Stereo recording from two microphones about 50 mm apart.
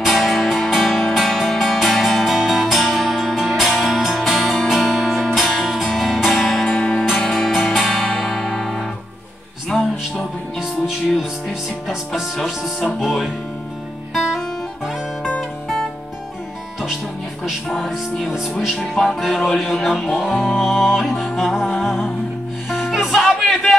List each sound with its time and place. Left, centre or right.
0.0 s music: centre
5.7 s music: centre
6.7 s music: left
7.2 s music: centre
12.4 s music: centre
17.6 s music: centre